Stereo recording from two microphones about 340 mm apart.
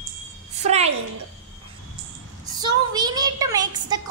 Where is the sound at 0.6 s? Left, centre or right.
Centre.